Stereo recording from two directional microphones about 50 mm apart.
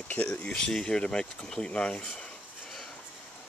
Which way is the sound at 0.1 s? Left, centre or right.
Left.